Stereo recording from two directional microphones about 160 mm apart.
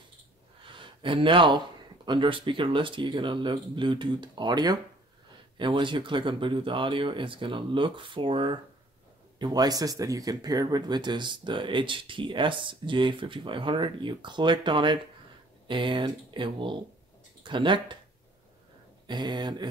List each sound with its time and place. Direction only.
0.7 s a sound: 30° right (ahead or behind)
2.0 s speech: 30° right (ahead or behind)
19.0 s speech: 25° right (ahead or behind)